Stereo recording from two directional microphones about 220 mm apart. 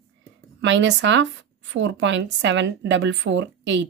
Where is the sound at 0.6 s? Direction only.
55° right (ahead or behind).